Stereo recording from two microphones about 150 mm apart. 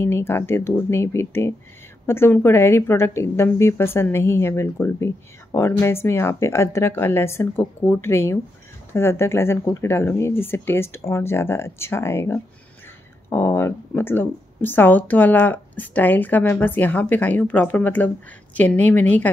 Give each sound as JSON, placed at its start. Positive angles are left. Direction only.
{"t": 0.0, "sound": "a woman's voice", "side_deg": 15}